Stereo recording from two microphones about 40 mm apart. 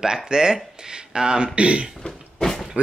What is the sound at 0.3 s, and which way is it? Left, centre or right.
Speech, centre.